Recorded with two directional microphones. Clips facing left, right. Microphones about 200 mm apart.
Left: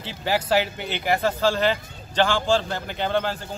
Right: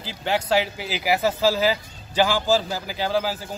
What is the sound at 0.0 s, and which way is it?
Speech, centre (ahead or behind).